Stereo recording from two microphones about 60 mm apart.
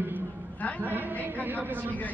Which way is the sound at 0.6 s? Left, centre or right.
Left.